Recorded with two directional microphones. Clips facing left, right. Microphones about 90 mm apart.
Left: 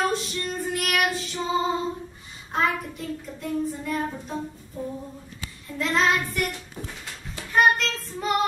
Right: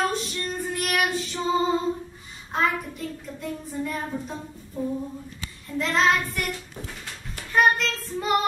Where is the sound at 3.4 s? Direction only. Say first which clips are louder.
Left 2 dB; centre (ahead or behind).